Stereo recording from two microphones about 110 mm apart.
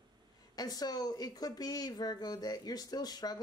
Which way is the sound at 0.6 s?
35° left (ahead or behind).